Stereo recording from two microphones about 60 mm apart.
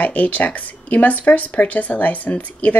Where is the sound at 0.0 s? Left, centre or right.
Left.